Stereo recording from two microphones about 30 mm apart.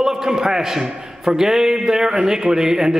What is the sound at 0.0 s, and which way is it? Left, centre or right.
A man's voice, centre.